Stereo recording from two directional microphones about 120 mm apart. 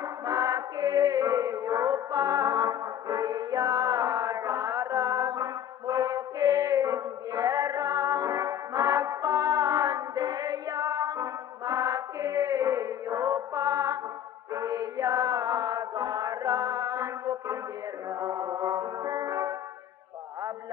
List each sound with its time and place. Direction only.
0.3 s chant: 30° right (ahead or behind)
18.2 s music: 30° right (ahead or behind)